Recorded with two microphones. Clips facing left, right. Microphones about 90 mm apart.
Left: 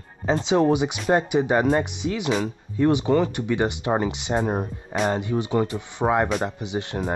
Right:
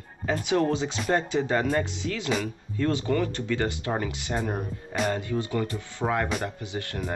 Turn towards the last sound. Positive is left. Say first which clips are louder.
# left 5 dB
turn(degrees=20)  # may be behind; listen again after turning